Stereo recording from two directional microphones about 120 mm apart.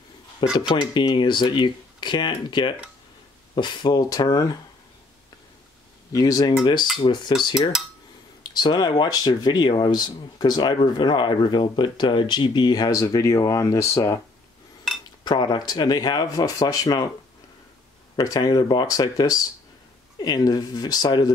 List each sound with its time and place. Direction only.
0.4 s speech: 40° left (ahead or behind)
6.1 s speech: 30° left (ahead or behind)
8.5 s speech: 35° left (ahead or behind)
15.2 s speech: 35° left (ahead or behind)
18.1 s speech: 30° left (ahead or behind)